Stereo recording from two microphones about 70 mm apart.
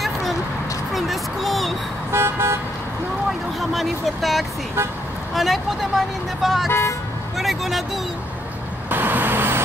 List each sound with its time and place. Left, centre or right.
0.0 s vehicle: centre
0.9 s a sound: centre
2.1 s car: right
3.7 s speech: centre
6.7 s speech: left
7.3 s speech: centre
8.9 s vehicle: right